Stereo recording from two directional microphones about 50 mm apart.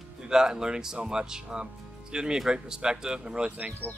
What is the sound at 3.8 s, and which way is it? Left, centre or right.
Speech, right.